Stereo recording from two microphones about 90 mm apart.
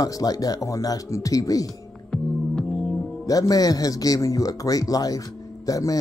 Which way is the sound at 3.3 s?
40° left (ahead or behind).